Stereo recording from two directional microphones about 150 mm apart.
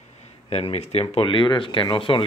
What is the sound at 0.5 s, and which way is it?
Speech, 40° left (ahead or behind).